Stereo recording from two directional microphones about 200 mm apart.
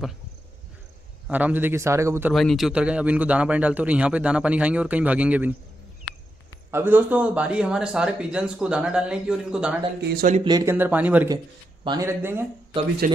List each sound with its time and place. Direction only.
1.2 s speech: 10° right (ahead or behind)
2.3 s speech: centre (ahead or behind)
6.7 s speech: 10° right (ahead or behind)
10.0 s speech: 50° right (ahead or behind)
10.3 s speech: 20° right (ahead or behind)
11.8 s speech: 20° right (ahead or behind)
13.0 s speech: 40° right (ahead or behind)